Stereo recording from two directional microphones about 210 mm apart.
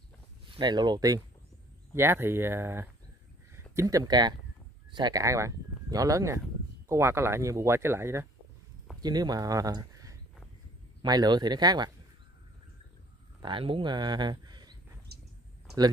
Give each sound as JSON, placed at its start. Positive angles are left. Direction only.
{"t": 0.6, "sound": "speech", "side_deg": -20}
{"t": 13.4, "sound": "speech", "side_deg": -25}
{"t": 15.1, "sound": "a sound", "side_deg": -50}